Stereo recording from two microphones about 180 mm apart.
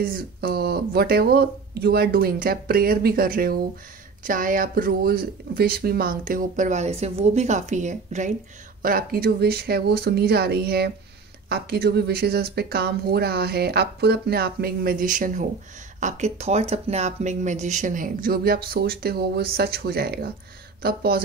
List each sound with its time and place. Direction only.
0.0 s speech: 55° right (ahead or behind)
8.8 s speech: 55° right (ahead or behind)